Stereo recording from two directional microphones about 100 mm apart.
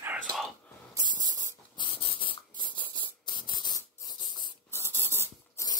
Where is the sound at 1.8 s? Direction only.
60° left (ahead or behind).